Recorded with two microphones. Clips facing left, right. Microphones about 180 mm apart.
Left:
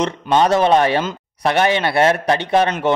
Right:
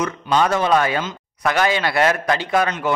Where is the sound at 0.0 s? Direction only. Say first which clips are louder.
Left 3 dB; 30° left (ahead or behind).